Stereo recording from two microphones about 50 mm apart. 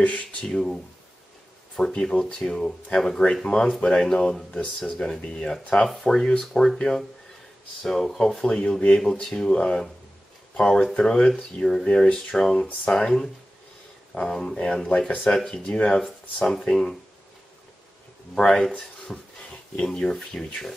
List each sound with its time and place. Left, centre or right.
0.0 s speech: left
0.5 s speech: centre
1.9 s speech: centre
3.8 s speech: centre
5.9 s speech: centre
14.2 s speech: centre
15.2 s speech: centre
15.5 s speech: centre
18.3 s speech: centre